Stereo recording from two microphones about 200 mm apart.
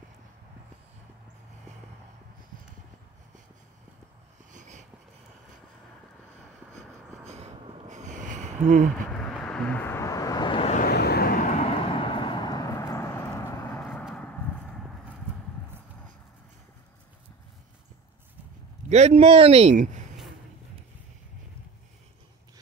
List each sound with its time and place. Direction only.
4.5 s a sound: 40° right (ahead or behind)
7.2 s a sound: 35° right (ahead or behind)
9.1 s vehicle: 5° left (ahead or behind); by 10.8 s 25° left (ahead or behind)
10.8 s vehicle: 55° left (ahead or behind); by 14.0 s 5° left (ahead or behind)
14.0 s horse: centre (ahead or behind)
18.9 s a man's voice: 35° right (ahead or behind)